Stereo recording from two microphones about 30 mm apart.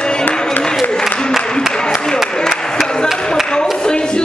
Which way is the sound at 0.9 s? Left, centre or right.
Left.